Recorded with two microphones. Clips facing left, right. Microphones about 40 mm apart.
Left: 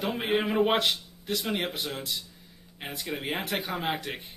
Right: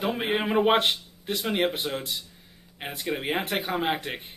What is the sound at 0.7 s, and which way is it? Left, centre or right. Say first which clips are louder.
A man's voice: right 3 dB; right.